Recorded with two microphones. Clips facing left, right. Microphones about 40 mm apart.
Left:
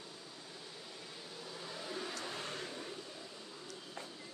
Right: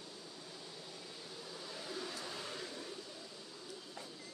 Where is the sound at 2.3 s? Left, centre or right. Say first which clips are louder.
Left 2 dB; left.